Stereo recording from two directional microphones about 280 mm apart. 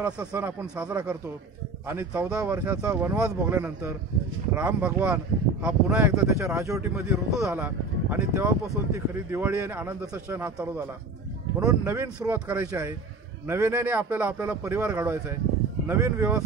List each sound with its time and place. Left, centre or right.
0.0 s speech: centre